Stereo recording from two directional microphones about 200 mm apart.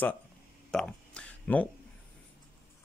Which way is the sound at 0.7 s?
5° left (ahead or behind).